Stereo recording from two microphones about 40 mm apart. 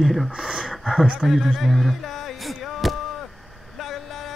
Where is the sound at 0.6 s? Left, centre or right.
Centre.